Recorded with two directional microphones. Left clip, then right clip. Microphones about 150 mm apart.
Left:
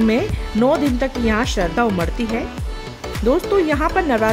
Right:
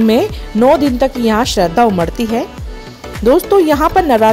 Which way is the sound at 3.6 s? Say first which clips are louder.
Right 7 dB; 25° right (ahead or behind).